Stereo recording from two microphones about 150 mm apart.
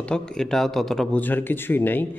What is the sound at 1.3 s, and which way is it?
Speech, 15° left (ahead or behind).